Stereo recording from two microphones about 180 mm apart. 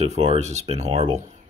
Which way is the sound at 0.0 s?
35° right (ahead or behind).